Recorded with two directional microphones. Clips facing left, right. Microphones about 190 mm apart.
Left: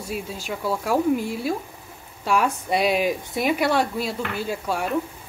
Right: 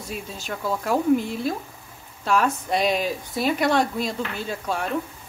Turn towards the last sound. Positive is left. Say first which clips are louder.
# left 2 dB
turn(degrees=10)  # may be behind; listen again after turning